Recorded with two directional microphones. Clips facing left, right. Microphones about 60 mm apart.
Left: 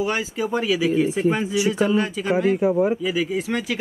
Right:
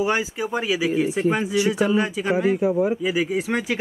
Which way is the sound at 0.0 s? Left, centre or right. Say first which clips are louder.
Right 1 dB; centre.